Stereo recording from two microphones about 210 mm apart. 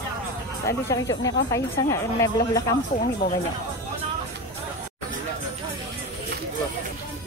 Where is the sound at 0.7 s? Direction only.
15° left (ahead or behind).